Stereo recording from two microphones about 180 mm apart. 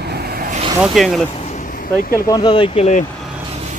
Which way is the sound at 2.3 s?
25° left (ahead or behind).